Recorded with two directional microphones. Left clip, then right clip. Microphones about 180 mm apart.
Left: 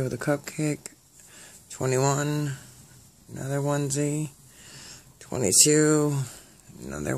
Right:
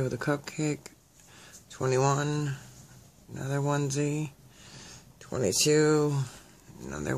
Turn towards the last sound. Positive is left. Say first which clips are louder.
# left 3 dB
turn(degrees=20)  # may be behind; listen again after turning